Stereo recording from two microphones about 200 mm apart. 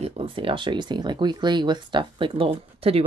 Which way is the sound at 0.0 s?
30° right (ahead or behind).